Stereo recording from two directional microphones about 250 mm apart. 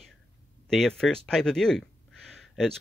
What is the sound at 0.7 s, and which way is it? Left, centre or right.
Speech, centre.